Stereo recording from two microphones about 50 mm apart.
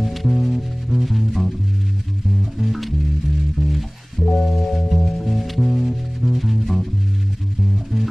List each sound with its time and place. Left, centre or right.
0.0 s music: centre
2.6 s music: centre
4.2 s music: centre
4.5 s music: centre